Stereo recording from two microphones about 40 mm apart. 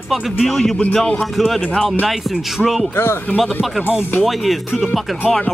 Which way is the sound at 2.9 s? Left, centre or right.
Left.